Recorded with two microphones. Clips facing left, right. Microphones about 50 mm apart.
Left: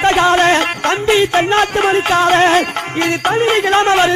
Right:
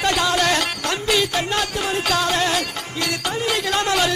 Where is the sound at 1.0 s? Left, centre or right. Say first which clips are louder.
Left 8 dB; left.